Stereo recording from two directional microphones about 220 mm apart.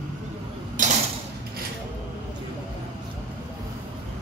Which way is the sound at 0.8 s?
35° right (ahead or behind).